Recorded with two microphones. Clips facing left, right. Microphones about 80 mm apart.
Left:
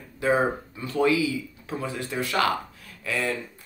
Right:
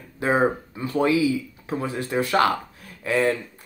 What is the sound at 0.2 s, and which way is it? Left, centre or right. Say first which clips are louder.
Speech: right 2 dB; right.